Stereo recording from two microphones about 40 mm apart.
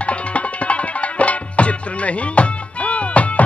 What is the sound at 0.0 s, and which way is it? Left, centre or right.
Music, left.